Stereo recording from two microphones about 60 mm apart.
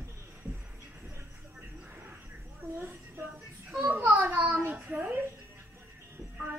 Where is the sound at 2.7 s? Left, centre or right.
Right.